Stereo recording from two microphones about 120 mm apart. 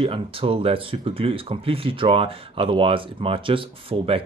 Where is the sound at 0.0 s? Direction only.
50° right (ahead or behind).